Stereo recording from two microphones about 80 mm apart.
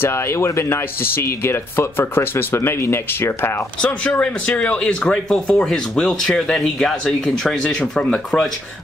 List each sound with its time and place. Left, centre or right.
0.0 s speech: left
3.8 s speech: centre